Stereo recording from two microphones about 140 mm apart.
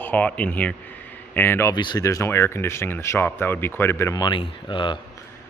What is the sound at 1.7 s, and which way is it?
Speech, 30° left (ahead or behind).